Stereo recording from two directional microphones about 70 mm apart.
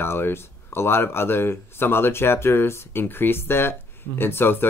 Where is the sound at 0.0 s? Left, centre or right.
Left.